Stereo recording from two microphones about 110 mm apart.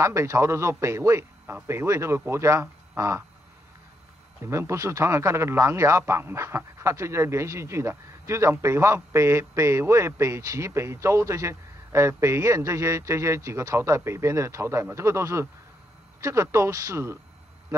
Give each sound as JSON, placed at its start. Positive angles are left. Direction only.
{"t": 0.0, "sound": "speech", "side_deg": -25}
{"t": 2.9, "sound": "a sound", "side_deg": -20}
{"t": 4.4, "sound": "speech", "side_deg": -25}